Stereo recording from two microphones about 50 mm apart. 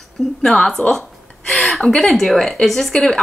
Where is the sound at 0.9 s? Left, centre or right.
Centre.